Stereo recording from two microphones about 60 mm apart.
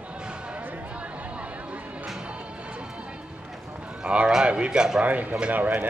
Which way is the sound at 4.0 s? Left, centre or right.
Centre.